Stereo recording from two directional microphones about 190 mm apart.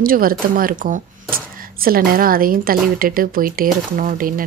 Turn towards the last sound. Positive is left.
turn(degrees=-45)  # may be behind; listen again after turning